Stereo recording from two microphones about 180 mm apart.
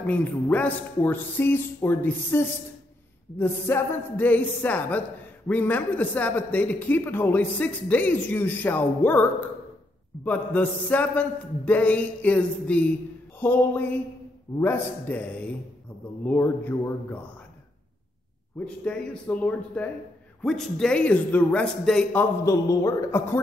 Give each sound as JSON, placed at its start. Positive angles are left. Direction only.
{"t": 0.0, "sound": "a man's voice", "side_deg": 10}
{"t": 10.2, "sound": "a man's voice", "side_deg": 10}
{"t": 18.7, "sound": "a man's voice", "side_deg": 5}
{"t": 22.4, "sound": "a man's voice", "side_deg": 15}